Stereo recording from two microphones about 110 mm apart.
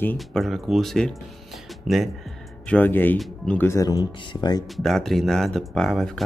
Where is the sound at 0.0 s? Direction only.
15° left (ahead or behind).